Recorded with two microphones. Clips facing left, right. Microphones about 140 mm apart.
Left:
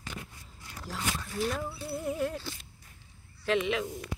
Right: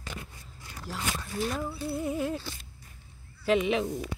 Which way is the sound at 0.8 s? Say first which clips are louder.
Right 1 dB; 5° right (ahead or behind).